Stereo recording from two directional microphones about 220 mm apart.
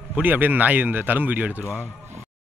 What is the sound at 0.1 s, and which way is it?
Speech, 10° right (ahead or behind).